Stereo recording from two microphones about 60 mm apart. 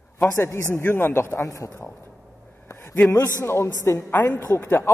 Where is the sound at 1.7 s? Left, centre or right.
Left.